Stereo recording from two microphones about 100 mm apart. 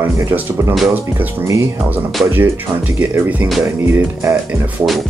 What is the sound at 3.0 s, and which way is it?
Speech, 20° right (ahead or behind).